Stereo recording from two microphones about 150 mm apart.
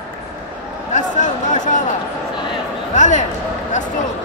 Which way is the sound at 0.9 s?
55° left (ahead or behind).